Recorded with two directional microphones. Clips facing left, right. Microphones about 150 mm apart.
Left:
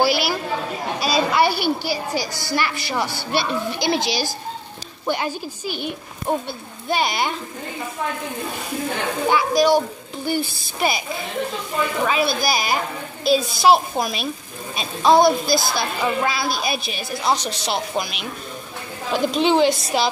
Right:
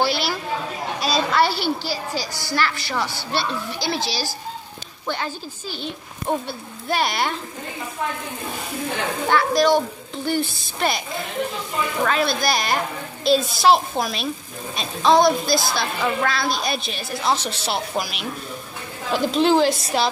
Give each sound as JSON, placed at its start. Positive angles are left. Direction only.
{"t": 0.0, "sound": "chatter", "side_deg": 10}
{"t": 0.9, "sound": "a woman's voice", "side_deg": 10}
{"t": 6.4, "sound": "a woman's voice", "side_deg": 0}
{"t": 9.3, "sound": "a woman's voice", "side_deg": 5}